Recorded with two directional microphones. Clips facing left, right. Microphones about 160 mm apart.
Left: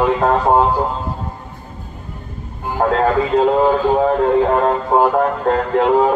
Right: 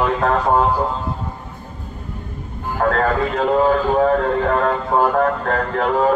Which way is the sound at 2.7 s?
20° left (ahead or behind).